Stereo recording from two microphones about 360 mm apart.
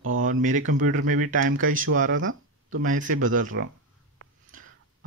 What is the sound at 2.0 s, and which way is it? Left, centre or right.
Speech, right.